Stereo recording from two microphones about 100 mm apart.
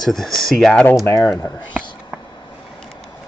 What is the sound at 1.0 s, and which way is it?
Speech, 35° left (ahead or behind).